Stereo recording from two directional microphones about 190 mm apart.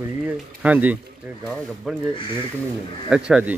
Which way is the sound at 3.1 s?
5° right (ahead or behind).